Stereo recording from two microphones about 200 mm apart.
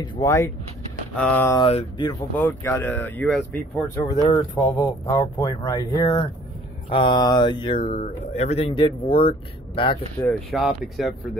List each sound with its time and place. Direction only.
0.0 s speech: 20° left (ahead or behind)
1.6 s speech: 30° left (ahead or behind)
2.3 s speech: 10° left (ahead or behind)
4.1 s speech: 20° left (ahead or behind)
10.1 s speech: 5° left (ahead or behind)